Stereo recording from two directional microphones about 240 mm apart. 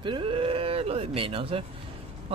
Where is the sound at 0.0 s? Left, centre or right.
Right.